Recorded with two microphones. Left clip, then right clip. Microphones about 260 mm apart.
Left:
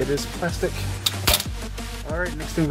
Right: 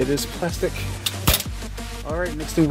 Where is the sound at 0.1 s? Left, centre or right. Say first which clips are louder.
Right 1 dB; centre.